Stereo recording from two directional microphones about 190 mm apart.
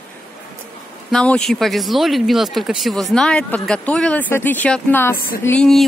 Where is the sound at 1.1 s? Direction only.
5° left (ahead or behind).